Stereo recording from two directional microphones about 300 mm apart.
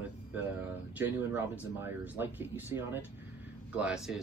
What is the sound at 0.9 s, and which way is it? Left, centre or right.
Speech, centre.